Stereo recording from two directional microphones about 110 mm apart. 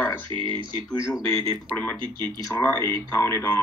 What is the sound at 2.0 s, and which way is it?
Speech, 45° right (ahead or behind).